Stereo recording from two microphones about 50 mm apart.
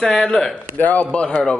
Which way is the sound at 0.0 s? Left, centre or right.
Centre.